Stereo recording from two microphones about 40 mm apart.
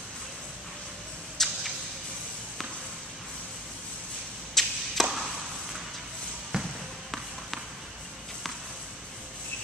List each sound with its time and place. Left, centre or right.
1.4 s a sound: centre
4.6 s arrow: centre
5.0 s chop: centre
6.5 s music: centre